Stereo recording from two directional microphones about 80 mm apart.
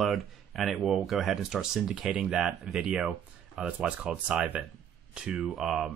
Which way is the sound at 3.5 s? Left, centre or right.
Centre.